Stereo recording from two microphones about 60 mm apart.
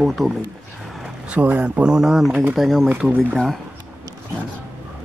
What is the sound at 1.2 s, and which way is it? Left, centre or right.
Speech, right.